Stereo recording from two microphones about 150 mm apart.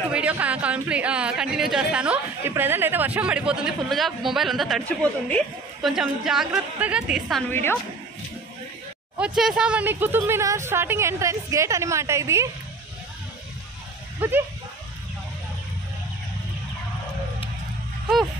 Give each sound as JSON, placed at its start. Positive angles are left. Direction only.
{"t": 0.1, "sound": "a woman's voice", "side_deg": -10}
{"t": 9.2, "sound": "speech", "side_deg": -5}
{"t": 14.2, "sound": "speech", "side_deg": -10}